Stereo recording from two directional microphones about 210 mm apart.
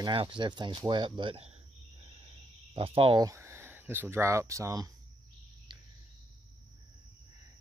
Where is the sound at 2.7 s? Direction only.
25° right (ahead or behind).